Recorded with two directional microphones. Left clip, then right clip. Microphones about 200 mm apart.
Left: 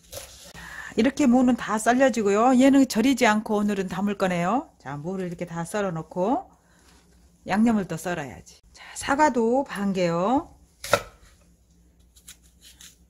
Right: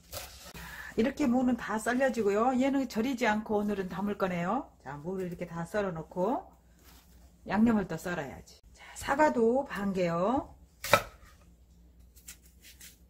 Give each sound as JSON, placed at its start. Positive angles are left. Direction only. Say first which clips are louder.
{"t": 0.9, "sound": "speech", "louder": "left 8 dB", "side_deg": 50}
{"t": 7.4, "sound": "speech", "louder": "left 5 dB", "side_deg": 40}
{"t": 8.7, "sound": "speech", "louder": "left 5 dB", "side_deg": 50}